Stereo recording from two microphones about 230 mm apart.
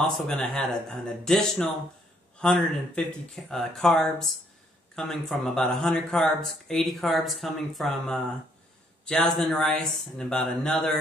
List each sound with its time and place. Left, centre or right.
0.0 s speech: centre